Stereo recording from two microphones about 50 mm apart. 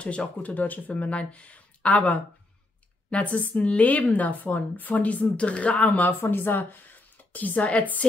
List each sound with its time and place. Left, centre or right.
0.0 s speech: left
3.1 s speech: left
6.3 s a woman's voice: left